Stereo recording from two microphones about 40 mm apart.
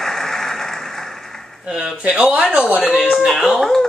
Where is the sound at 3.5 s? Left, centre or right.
Centre.